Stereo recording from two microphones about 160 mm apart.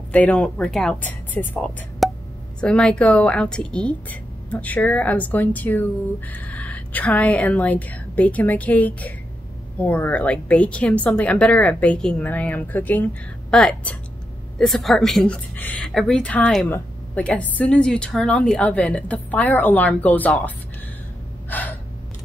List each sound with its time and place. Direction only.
0.1 s speech: 10° left (ahead or behind)
2.0 s a sound: centre (ahead or behind)
2.6 s speech: 5° left (ahead or behind)
21.5 s gasp: 10° left (ahead or behind)